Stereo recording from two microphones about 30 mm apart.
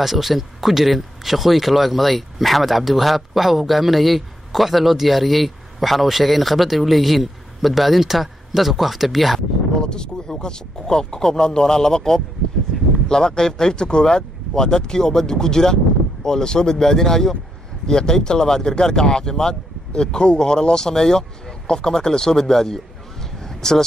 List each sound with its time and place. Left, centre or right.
0.0 s speech: centre
9.8 s a sound: left
10.4 s speech: left
12.7 s vehicle: centre
13.1 s speech: left
23.4 s vehicle: centre